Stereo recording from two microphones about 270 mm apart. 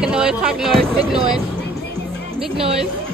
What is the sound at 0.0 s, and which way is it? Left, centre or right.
Speech, centre.